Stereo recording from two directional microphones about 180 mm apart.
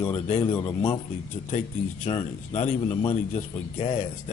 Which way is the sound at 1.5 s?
40° left (ahead or behind).